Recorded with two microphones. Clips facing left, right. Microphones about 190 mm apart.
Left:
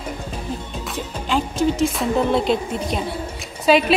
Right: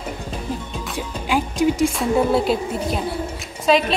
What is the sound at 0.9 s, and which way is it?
Music, 10° right (ahead or behind).